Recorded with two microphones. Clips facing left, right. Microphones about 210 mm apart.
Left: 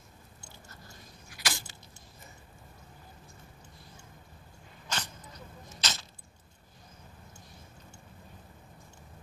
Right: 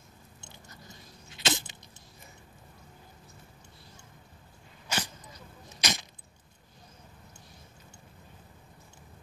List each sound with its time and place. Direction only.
0.4 s chewing: 20° right (ahead or behind)
4.8 s sneeze: 10° right (ahead or behind)
5.8 s a sound: 15° right (ahead or behind)